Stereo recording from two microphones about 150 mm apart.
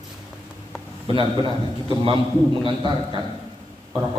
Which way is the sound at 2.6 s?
30° right (ahead or behind).